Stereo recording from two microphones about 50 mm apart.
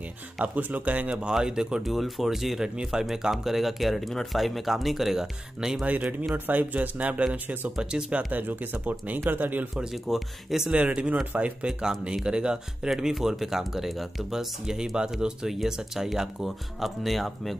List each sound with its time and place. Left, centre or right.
0.6 s speech: right
1.3 s speech: centre
1.8 s speech: centre
2.7 s speech: centre
5.9 s speech: right
7.7 s speech: centre
8.3 s speech: right
10.0 s speech: centre
11.3 s speech: right; by 17.6 s centre